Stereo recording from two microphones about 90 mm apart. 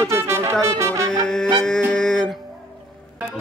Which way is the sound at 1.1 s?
10° left (ahead or behind).